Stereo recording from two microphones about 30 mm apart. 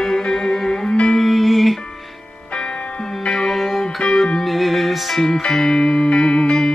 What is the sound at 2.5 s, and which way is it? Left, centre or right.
Music, left.